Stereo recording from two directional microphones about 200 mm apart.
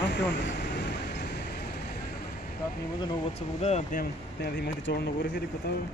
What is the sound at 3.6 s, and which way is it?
Speech, 35° left (ahead or behind).